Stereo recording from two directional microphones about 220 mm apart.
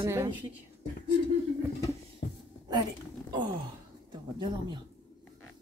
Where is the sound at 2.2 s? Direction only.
45° left (ahead or behind).